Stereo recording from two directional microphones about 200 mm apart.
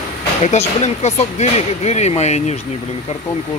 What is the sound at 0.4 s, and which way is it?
Speech, 35° left (ahead or behind).